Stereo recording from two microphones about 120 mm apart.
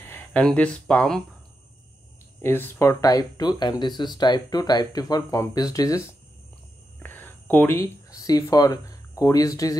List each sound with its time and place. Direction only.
0.0 s a sound: 20° left (ahead or behind)
0.4 s speech: 10° left (ahead or behind)
2.4 s speech: 20° left (ahead or behind)
7.0 s speech: 15° left (ahead or behind)